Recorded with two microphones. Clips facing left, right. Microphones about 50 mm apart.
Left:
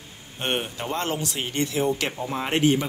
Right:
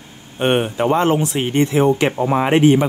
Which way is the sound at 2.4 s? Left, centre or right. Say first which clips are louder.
Right 8 dB; right.